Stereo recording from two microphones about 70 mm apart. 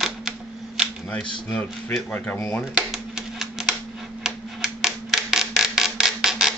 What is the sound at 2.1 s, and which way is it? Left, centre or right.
Speech, left.